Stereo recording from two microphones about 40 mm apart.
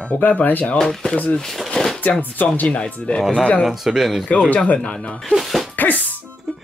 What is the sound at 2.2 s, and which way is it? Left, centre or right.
Speech, left.